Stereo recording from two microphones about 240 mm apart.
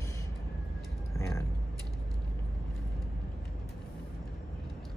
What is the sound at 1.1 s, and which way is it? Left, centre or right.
Speech, centre.